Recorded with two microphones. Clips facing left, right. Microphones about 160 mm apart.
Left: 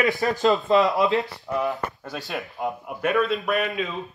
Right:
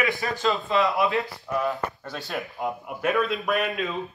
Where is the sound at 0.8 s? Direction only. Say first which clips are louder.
Left 3 dB; 20° left (ahead or behind).